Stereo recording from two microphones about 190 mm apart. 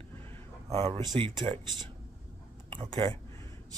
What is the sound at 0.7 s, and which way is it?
Speech, 25° right (ahead or behind).